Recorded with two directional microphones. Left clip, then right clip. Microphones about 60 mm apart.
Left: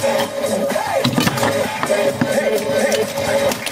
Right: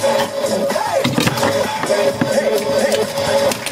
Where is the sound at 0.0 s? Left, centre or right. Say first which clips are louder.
Right 2 dB; right.